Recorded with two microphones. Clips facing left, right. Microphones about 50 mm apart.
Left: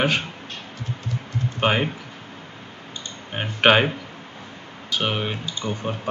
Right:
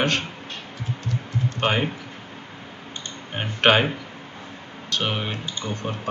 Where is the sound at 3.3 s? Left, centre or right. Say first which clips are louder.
Left 1 dB; centre.